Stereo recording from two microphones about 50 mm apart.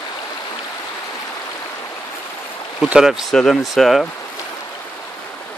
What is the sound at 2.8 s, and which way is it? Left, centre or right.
Speech, centre.